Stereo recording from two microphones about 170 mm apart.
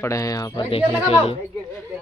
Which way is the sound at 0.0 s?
20° left (ahead or behind).